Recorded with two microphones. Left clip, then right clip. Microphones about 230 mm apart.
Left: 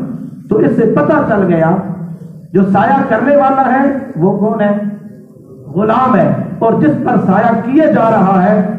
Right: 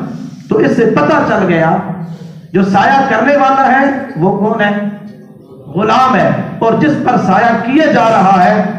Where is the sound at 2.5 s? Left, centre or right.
Right.